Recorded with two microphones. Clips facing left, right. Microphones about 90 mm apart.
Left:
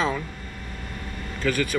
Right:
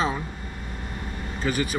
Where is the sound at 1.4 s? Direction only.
15° right (ahead or behind).